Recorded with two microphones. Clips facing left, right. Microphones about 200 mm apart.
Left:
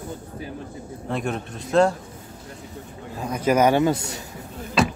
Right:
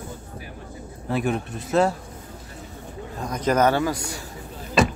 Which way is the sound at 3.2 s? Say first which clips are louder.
Left 1 dB; 10° left (ahead or behind).